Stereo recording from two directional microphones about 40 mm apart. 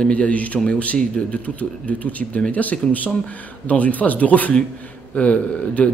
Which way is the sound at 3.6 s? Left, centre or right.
Left.